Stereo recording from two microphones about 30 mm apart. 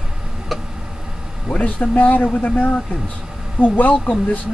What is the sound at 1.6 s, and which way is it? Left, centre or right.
Speech, left.